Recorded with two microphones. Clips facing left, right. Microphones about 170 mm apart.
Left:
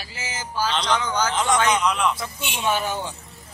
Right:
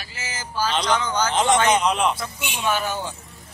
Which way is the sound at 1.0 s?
10° left (ahead or behind).